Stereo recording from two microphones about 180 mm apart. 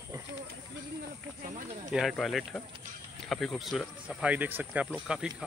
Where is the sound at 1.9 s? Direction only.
Centre (ahead or behind).